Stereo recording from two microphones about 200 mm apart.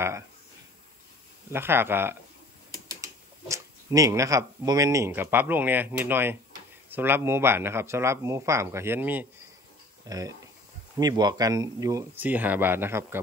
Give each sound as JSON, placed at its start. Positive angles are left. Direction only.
{"t": 1.5, "sound": "speech", "side_deg": -10}